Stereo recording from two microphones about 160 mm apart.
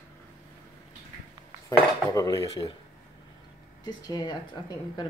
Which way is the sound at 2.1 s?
20° left (ahead or behind).